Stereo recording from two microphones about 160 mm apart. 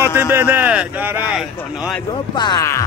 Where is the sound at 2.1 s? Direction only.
25° left (ahead or behind).